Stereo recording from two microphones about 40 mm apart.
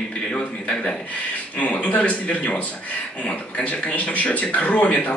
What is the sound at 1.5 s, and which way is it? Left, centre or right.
Speech, left.